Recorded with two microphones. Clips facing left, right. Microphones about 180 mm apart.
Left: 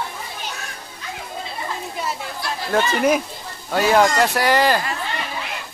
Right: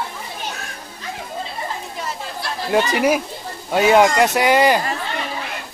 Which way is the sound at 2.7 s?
10° right (ahead or behind).